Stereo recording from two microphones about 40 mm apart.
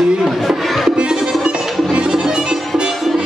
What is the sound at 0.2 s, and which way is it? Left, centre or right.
Music, centre.